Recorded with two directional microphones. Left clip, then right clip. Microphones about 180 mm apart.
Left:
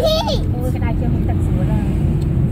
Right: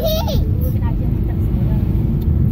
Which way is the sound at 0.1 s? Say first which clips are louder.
Left 4 dB; centre (ahead or behind).